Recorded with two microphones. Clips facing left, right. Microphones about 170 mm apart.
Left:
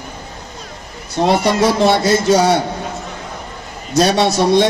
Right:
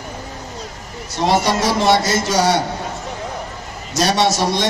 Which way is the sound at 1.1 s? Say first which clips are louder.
Left 3 dB; 55° left (ahead or behind).